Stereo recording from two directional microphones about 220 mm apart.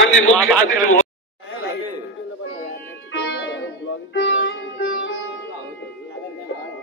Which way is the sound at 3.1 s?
55° left (ahead or behind).